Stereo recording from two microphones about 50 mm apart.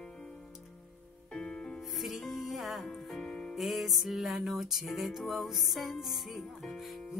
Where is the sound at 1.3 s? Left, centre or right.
Centre.